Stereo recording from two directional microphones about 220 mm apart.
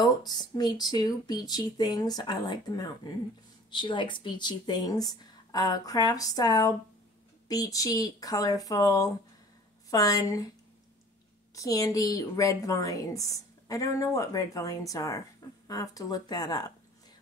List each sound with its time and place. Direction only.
0.0 s a woman's voice: 20° left (ahead or behind)
11.5 s a woman's voice: 15° left (ahead or behind)